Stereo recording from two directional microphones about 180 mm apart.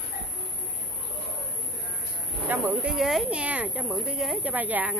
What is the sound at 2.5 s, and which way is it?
Speech, 10° right (ahead or behind).